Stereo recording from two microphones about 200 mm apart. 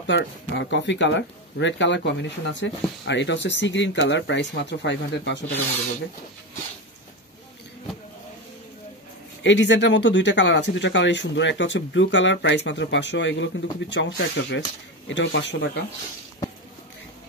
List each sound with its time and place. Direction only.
0.0 s speech: 65° left (ahead or behind)
9.4 s speech: 65° left (ahead or behind)